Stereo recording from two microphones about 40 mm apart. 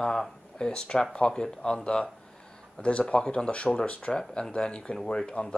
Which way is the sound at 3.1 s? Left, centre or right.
Left.